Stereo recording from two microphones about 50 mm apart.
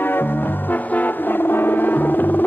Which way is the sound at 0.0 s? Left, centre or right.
Left.